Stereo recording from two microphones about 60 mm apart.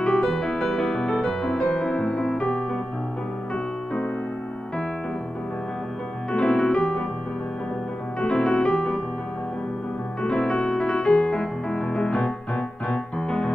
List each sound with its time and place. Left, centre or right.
0.0 s music: centre
6.3 s piano: centre
6.8 s music: centre
8.2 s music: centre
10.2 s music: centre